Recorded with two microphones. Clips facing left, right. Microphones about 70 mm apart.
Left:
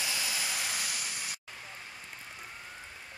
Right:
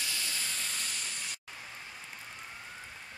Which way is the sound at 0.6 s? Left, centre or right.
Centre.